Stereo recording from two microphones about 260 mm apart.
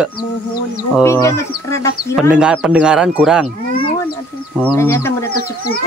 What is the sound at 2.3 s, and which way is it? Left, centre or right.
Speech, centre.